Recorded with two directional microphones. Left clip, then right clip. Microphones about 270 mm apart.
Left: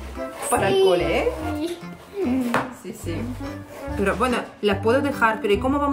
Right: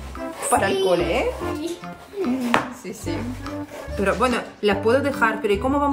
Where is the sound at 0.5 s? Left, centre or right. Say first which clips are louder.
Left 1 dB; centre.